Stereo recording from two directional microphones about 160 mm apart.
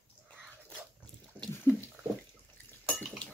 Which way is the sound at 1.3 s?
15° left (ahead or behind).